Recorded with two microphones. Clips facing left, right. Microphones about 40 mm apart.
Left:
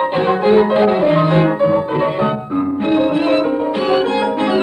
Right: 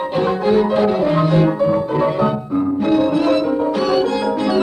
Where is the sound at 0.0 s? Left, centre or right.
Left.